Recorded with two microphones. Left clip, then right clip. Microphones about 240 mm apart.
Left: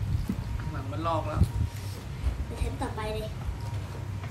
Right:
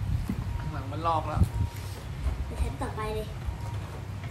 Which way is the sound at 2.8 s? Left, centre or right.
Centre.